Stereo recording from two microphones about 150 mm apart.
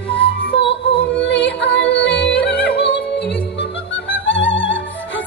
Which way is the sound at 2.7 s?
90° left.